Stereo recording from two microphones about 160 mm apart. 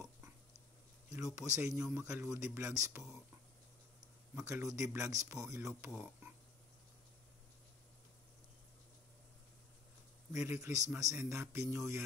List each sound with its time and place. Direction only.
1.3 s a man's voice: 20° right (ahead or behind)
4.4 s a man's voice: 15° right (ahead or behind)
10.3 s a man's voice: 15° right (ahead or behind)